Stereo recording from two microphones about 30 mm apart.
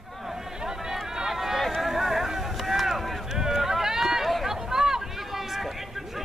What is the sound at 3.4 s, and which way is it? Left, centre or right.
Run, centre.